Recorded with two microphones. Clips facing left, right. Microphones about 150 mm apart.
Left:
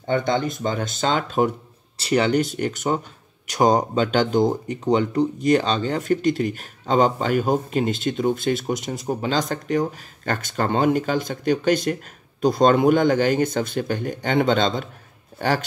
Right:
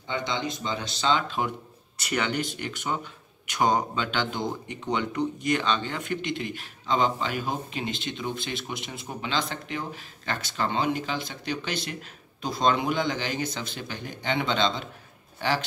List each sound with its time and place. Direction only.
0.0 s speech: 50° left (ahead or behind)
2.0 s speech: 35° left (ahead or behind)